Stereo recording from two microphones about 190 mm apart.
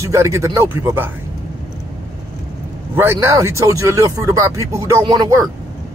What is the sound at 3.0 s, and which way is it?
Speech, 15° right (ahead or behind).